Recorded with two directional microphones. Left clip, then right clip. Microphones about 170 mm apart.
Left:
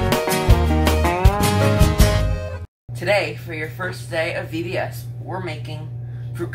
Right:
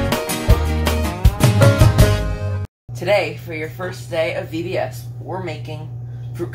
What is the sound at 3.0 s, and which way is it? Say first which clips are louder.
Speech: right 2 dB; 10° right (ahead or behind).